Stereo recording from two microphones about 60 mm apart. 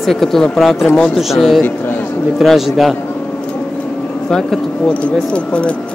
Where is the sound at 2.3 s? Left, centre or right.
Centre.